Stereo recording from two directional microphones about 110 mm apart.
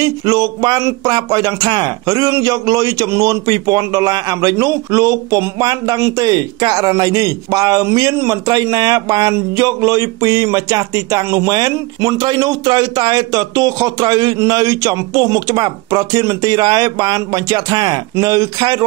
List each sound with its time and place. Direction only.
0.0 s speech: 35° right (ahead or behind)